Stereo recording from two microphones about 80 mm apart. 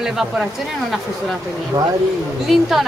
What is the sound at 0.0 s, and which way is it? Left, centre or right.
Speech, centre.